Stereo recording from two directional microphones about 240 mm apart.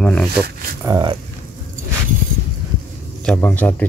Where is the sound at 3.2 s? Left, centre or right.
Centre.